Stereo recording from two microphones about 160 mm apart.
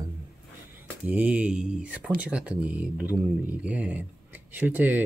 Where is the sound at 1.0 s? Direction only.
10° right (ahead or behind).